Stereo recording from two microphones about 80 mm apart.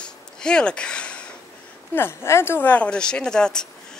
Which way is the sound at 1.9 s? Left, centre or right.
Left.